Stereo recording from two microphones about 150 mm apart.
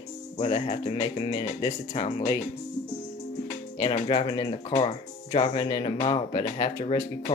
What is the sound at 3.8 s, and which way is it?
Speech, 35° left (ahead or behind).